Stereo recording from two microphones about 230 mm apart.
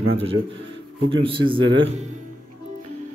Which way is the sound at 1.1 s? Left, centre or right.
Right.